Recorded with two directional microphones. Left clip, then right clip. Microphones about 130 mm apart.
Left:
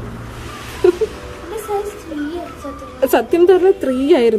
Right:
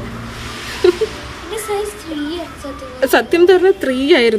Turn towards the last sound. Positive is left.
turn(degrees=10)  # may be behind; listen again after turning